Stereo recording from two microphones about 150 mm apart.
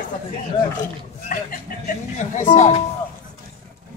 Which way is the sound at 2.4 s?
55° left (ahead or behind).